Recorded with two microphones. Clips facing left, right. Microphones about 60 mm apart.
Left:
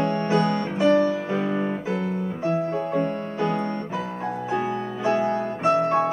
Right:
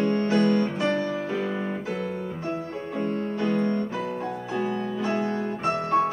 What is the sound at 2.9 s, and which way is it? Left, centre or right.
Music, centre.